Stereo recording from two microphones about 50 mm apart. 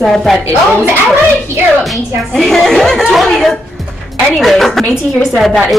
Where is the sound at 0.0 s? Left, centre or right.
Centre.